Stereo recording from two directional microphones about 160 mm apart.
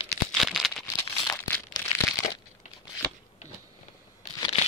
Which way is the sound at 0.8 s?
20° left (ahead or behind).